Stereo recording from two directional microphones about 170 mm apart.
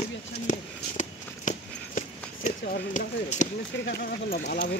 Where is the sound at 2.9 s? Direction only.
50° left (ahead or behind).